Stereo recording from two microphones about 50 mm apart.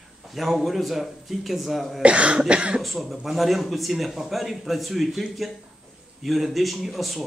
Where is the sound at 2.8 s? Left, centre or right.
Centre.